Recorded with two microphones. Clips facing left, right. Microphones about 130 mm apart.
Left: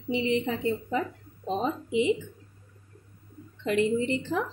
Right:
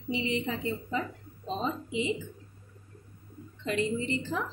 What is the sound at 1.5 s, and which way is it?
Speech, 60° left (ahead or behind).